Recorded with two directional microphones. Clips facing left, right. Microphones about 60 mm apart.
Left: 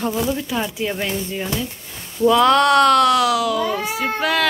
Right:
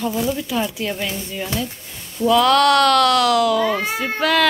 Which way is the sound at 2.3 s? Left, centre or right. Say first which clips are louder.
Even; left.